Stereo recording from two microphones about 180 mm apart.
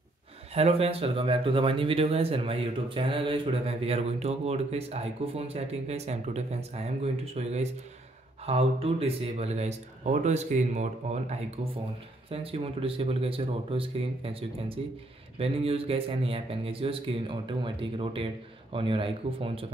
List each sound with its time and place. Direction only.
0.6 s speech: 35° right (ahead or behind)